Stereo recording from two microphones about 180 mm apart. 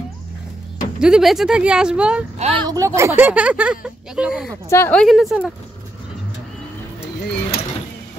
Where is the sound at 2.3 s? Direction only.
35° right (ahead or behind).